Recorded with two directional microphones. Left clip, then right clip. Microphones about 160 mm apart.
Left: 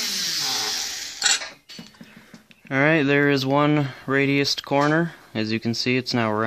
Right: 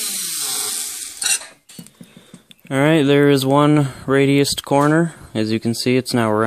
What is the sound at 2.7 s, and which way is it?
Speech, 50° right (ahead or behind).